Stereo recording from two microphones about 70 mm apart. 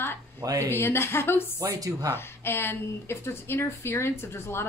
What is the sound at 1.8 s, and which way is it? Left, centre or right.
Speech, right.